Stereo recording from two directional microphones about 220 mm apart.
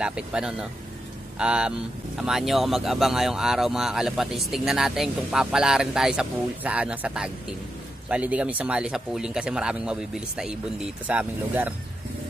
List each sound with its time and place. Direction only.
0.0 s speech: 5° right (ahead or behind)